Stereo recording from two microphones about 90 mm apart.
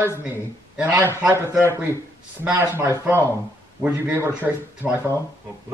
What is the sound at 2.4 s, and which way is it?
Speech, 25° right (ahead or behind).